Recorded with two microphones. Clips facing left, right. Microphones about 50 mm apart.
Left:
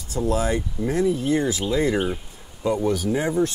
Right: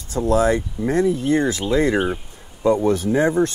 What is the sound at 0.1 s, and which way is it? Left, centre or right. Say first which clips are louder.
Speech: right 5 dB; right.